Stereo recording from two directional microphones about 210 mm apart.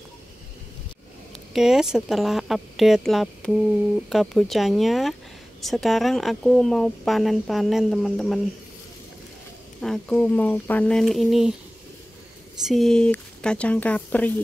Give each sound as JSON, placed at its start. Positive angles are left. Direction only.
{"t": 1.5, "sound": "speech", "side_deg": 0}
{"t": 9.8, "sound": "speech", "side_deg": 5}
{"t": 12.6, "sound": "speech", "side_deg": 0}